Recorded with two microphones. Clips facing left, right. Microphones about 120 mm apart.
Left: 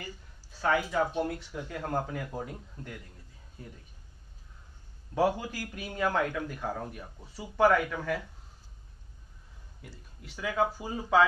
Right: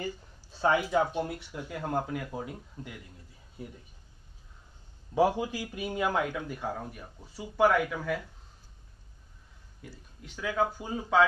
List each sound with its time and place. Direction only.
0.5 s a sound: 25° right (ahead or behind)
1.1 s a man's voice: 5° right (ahead or behind)
5.1 s a man's voice: 5° right (ahead or behind)
9.8 s a man's voice: 5° left (ahead or behind)